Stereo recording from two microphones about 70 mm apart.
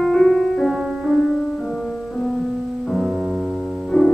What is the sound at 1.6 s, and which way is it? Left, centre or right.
Music, centre.